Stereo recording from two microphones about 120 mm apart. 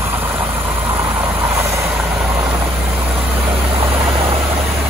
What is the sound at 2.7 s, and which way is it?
Vehicle, 15° right (ahead or behind).